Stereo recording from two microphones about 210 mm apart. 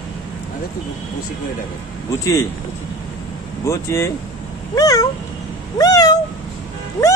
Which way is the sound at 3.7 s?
15° left (ahead or behind).